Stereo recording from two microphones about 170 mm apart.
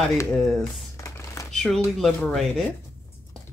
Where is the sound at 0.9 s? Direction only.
20° left (ahead or behind).